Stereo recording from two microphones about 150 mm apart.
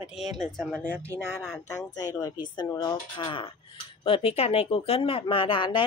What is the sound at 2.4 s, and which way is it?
Speech, 30° left (ahead or behind).